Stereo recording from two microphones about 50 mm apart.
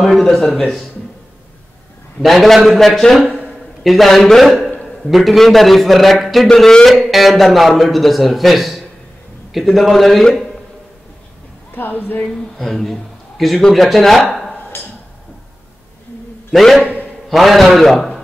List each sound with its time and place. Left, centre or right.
0.0 s a man's voice: centre
2.2 s a man's voice: centre
11.7 s speech: left
12.3 s a man's voice: centre
16.5 s a man's voice: centre